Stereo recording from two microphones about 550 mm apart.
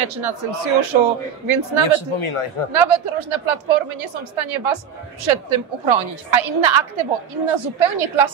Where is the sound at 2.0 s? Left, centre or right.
Left.